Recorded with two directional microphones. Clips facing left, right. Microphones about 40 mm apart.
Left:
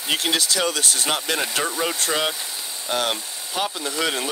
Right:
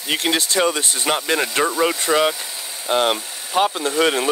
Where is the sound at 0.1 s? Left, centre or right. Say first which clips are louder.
Right 2 dB; right.